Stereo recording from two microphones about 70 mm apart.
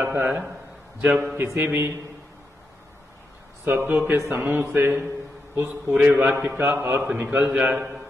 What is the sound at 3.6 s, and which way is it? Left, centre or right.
Speech, right.